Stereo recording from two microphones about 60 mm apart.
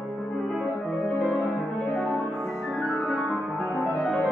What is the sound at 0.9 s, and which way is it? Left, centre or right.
Music, left.